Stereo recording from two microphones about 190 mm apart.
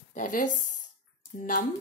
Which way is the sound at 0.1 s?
45° left (ahead or behind).